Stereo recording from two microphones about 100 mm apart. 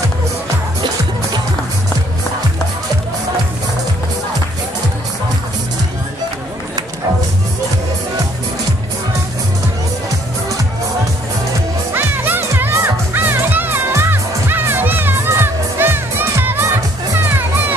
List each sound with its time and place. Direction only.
11.9 s music: 20° right (ahead or behind)